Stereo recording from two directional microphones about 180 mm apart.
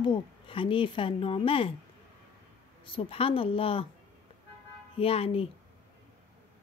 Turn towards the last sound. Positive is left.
turn(degrees=30)  # may be behind; listen again after turning